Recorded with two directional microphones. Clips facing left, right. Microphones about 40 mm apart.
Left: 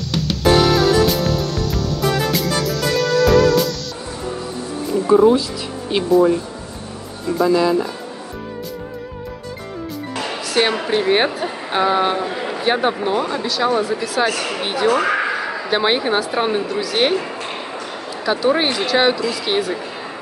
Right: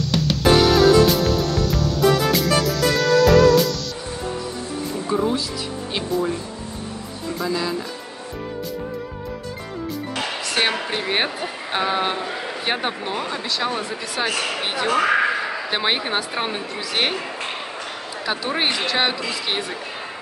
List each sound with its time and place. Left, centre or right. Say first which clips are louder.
0.0 s music: left 1 dB; centre
5.0 s music: left 11 dB; centre
5.9 s speech: left 10 dB; centre
7.3 s speech: left 9 dB; centre
10.4 s speech: left 5 dB; centre
18.2 s speech: left 6 dB; centre